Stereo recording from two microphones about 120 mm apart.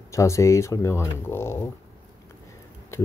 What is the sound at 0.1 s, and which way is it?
Speech, 25° left (ahead or behind).